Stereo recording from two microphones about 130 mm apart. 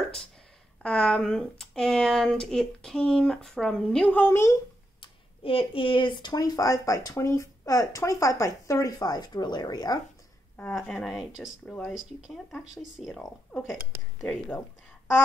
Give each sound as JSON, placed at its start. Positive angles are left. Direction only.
{"t": 0.8, "sound": "speech", "side_deg": 5}
{"t": 5.0, "sound": "speech", "side_deg": 45}
{"t": 10.7, "sound": "speech", "side_deg": 0}